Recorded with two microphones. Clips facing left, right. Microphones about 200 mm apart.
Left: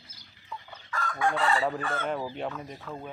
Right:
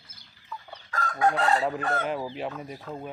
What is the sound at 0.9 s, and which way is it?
Chicken, 40° right (ahead or behind).